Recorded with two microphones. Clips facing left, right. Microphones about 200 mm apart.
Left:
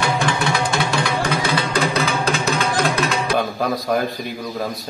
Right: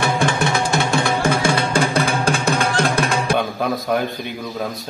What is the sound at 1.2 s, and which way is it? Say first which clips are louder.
Music: right 3 dB; 50° right (ahead or behind).